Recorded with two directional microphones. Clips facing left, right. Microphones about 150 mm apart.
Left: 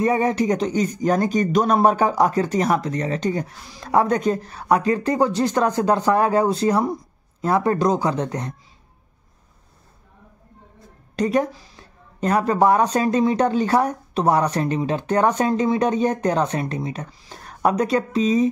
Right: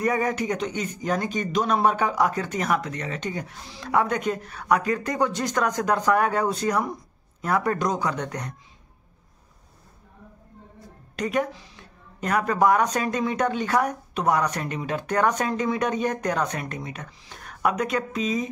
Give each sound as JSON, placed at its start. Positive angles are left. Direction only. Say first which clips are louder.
{"t": 0.0, "sound": "speech", "louder": "left 5 dB", "side_deg": 25}
{"t": 11.1, "sound": "speech", "louder": "left 5 dB", "side_deg": 35}